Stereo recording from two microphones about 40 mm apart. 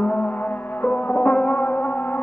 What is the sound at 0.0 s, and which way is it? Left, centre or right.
Music, left.